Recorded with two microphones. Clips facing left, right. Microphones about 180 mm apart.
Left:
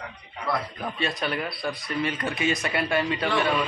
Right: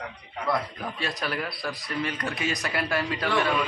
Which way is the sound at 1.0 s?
Centre (ahead or behind).